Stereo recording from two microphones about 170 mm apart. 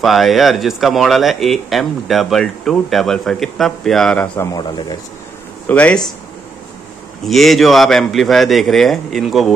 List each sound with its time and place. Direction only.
0.0 s speech: centre (ahead or behind)
4.4 s speech: 20° left (ahead or behind)
5.7 s speech: 10° left (ahead or behind)
7.2 s speech: centre (ahead or behind)